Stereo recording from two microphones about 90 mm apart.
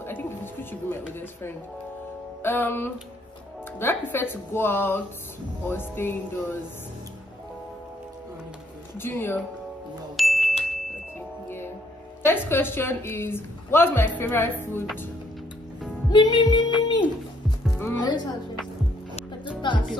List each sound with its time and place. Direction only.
0.0 s music: 25° left (ahead or behind)
2.4 s a woman's voice: 25° left (ahead or behind)
8.9 s a woman's voice: 25° left (ahead or behind)
10.1 s music: centre (ahead or behind)
12.3 s a woman's voice: 25° left (ahead or behind)
16.1 s music: 55° left (ahead or behind)
18.0 s music: 55° left (ahead or behind)